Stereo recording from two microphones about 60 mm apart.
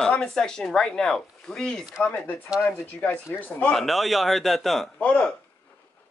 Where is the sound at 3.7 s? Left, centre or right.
Centre.